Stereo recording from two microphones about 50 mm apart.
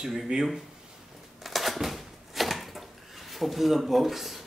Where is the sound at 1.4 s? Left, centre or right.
Centre.